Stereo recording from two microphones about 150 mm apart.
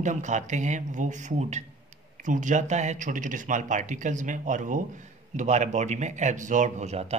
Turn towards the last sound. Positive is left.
turn(degrees=-45)  # may be behind; listen again after turning